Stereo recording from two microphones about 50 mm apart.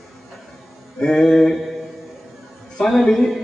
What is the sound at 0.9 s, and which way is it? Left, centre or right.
Speech, centre.